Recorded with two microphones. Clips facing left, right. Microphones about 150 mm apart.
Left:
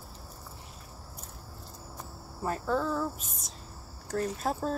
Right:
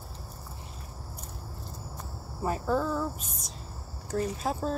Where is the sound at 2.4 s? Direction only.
10° right (ahead or behind).